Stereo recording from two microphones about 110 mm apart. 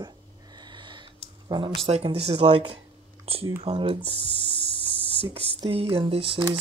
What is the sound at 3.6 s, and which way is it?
Speech, 50° right (ahead or behind).